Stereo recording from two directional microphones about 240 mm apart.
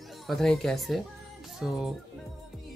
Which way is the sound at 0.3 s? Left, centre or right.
Centre.